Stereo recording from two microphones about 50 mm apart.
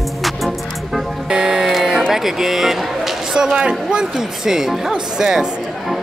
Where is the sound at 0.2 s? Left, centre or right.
Centre.